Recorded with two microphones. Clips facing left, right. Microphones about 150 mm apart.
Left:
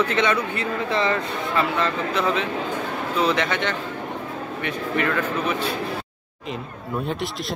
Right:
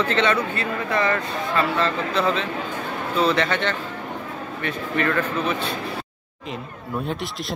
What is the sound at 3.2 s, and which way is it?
Speech, 15° left (ahead or behind).